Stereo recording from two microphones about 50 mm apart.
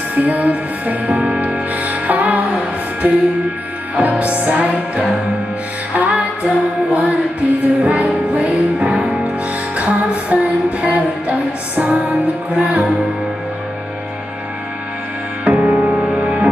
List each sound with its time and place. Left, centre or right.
0.1 s music: right
15.4 s music: right